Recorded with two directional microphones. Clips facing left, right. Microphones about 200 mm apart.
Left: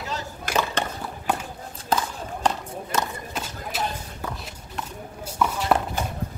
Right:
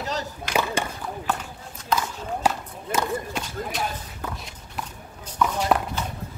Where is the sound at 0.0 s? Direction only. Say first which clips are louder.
Right 3 dB; 40° right (ahead or behind).